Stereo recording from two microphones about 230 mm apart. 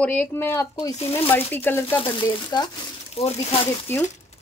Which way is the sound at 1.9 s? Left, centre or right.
Left.